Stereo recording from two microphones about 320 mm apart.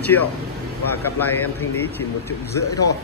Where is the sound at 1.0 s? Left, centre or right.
Centre.